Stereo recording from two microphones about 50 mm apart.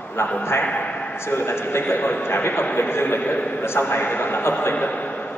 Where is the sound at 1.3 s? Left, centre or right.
Left.